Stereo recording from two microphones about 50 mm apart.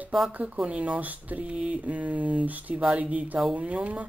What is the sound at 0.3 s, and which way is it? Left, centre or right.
Speech, right.